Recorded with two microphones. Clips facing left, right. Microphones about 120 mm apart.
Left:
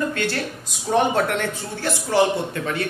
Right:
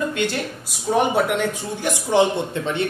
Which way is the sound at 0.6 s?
5° right (ahead or behind).